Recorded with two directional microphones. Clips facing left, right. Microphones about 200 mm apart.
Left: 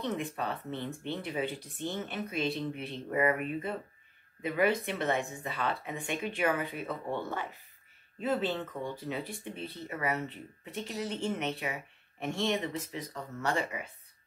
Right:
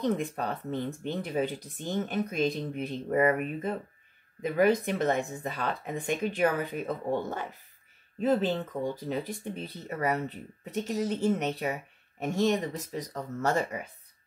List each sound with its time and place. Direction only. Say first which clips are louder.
0.0 s speech: right 5 dB; 40° right (ahead or behind)